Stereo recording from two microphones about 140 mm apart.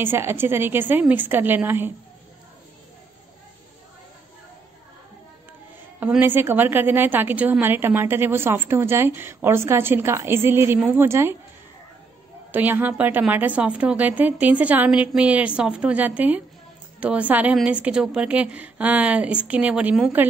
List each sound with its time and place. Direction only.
0.0 s a woman's voice: 15° right (ahead or behind)
5.9 s a woman's voice: 15° right (ahead or behind)
12.4 s a woman's voice: 15° right (ahead or behind)